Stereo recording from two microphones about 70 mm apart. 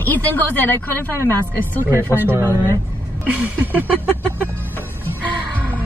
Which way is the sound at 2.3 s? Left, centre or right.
Right.